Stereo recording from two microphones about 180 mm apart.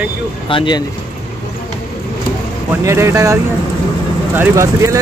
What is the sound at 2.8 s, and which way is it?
Speech, 15° right (ahead or behind).